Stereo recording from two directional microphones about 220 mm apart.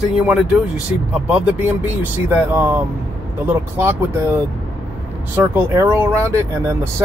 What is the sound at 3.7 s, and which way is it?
Speech, 10° right (ahead or behind).